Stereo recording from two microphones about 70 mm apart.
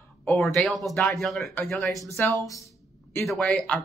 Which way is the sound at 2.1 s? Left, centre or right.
Left.